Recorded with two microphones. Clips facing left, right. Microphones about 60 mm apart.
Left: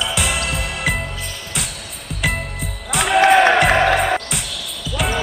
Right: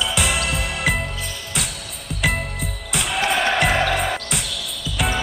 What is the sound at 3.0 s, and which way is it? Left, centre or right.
Music, left.